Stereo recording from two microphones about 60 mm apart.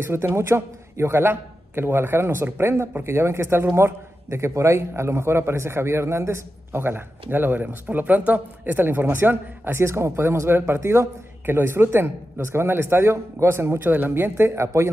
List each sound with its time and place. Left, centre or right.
0.0 s a man's voice: right
9.8 s a man's voice: right
11.4 s a man's voice: right